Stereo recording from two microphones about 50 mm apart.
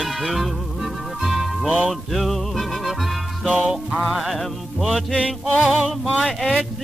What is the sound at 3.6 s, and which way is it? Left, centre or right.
Music, centre.